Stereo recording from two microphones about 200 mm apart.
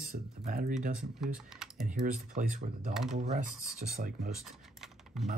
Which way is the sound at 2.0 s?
40° right (ahead or behind).